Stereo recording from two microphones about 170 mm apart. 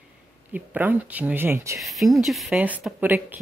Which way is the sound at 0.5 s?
10° right (ahead or behind).